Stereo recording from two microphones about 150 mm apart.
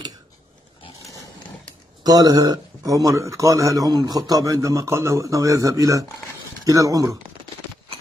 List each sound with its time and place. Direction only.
2.0 s speech: 25° right (ahead or behind)